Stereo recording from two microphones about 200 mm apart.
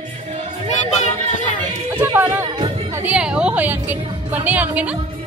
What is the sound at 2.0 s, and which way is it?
Music, 10° right (ahead or behind).